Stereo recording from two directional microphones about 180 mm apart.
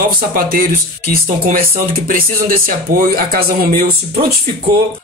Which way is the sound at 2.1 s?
50° right (ahead or behind).